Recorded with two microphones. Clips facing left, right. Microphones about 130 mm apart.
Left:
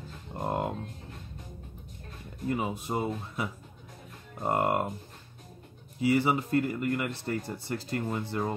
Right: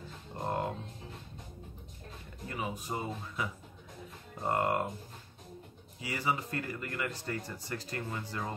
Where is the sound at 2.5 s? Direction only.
25° left (ahead or behind).